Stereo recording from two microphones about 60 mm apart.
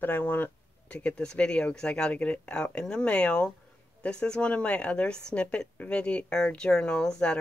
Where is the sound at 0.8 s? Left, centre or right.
Left.